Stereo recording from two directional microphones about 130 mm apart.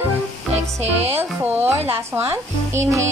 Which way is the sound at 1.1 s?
15° right (ahead or behind).